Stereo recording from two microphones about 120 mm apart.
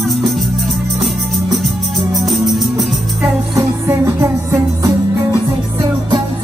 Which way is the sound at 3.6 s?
25° right (ahead or behind).